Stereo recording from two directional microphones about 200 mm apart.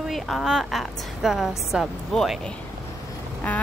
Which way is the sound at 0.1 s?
Centre (ahead or behind).